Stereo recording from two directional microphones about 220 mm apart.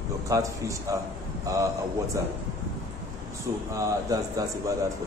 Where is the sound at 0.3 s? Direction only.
15° right (ahead or behind).